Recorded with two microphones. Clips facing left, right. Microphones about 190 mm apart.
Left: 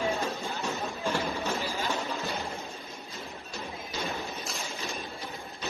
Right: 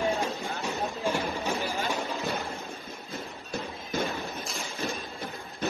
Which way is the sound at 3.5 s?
55° right (ahead or behind).